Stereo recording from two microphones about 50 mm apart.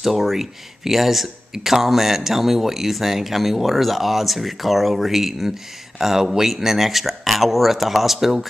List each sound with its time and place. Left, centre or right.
0.0 s speech: centre